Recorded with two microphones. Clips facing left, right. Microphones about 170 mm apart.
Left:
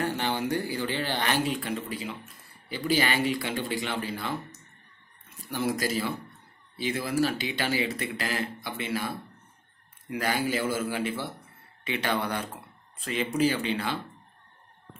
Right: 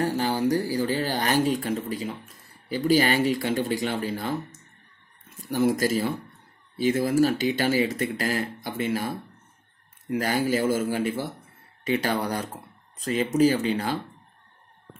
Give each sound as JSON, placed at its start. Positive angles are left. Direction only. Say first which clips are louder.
{"t": 0.0, "sound": "speech", "louder": "right 5 dB", "side_deg": -35}